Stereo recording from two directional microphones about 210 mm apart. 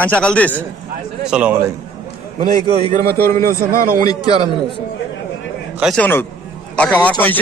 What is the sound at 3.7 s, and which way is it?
Speech, 45° right (ahead or behind).